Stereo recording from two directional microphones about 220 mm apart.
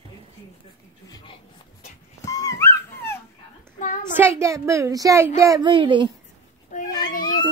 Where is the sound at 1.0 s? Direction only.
15° left (ahead or behind).